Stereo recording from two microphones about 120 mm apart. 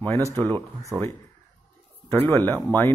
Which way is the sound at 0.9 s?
30° right (ahead or behind).